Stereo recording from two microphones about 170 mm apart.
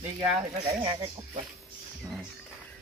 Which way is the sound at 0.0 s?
10° right (ahead or behind).